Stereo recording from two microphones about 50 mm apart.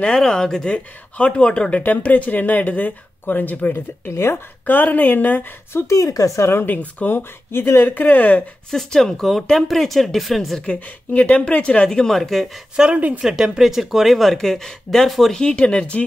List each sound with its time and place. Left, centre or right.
0.0 s speech: centre
0.7 s speech: left
1.8 s speech: left
4.1 s speech: left
4.6 s speech: left
5.9 s speech: left
6.5 s speech: left
8.6 s speech: centre
10.6 s speech: left; by 12.4 s centre
12.7 s speech: centre
15.3 s speech: centre